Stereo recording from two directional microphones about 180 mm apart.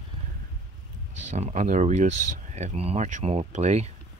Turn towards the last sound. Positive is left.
turn(degrees=-40)  # may be behind; listen again after turning